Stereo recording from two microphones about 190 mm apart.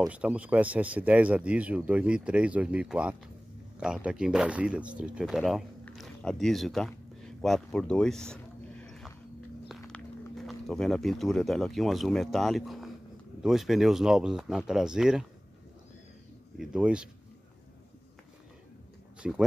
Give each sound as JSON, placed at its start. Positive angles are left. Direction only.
{"t": 0.1, "sound": "speech", "side_deg": -5}
{"t": 16.5, "sound": "speech", "side_deg": -5}
{"t": 19.2, "sound": "speech", "side_deg": -5}